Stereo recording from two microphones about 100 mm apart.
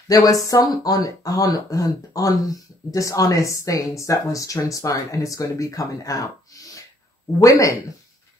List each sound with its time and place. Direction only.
0.1 s speech: 35° left (ahead or behind)
7.3 s speech: 35° left (ahead or behind)